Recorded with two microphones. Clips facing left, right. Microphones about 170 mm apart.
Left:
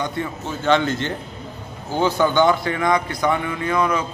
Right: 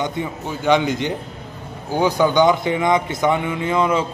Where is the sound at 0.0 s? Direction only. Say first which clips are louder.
Right 1 dB; 15° right (ahead or behind).